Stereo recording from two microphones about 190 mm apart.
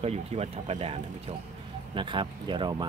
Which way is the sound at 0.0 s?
35° right (ahead or behind).